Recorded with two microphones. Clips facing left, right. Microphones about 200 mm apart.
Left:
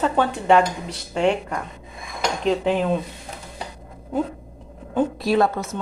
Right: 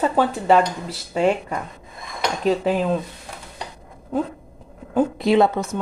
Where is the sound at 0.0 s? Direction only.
5° right (ahead or behind).